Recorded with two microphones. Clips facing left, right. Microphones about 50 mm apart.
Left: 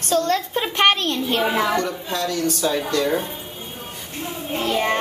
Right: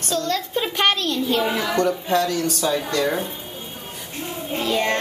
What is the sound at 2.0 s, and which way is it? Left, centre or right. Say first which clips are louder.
Speech: right 3 dB; right.